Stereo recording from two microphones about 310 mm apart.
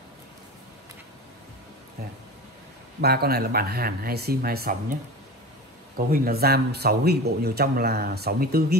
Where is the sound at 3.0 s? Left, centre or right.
Right.